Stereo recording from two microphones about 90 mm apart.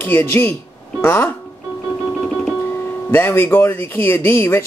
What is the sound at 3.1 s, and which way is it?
Speech, 25° left (ahead or behind).